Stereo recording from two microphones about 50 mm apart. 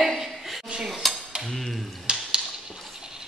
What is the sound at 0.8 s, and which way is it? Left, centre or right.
Cutlery, centre.